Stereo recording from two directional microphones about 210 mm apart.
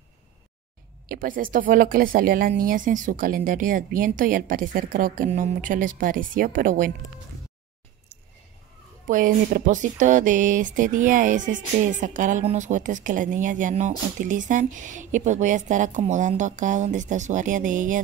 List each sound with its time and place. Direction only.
1.0 s speech: 45° right (ahead or behind)
9.0 s speech: 40° right (ahead or behind)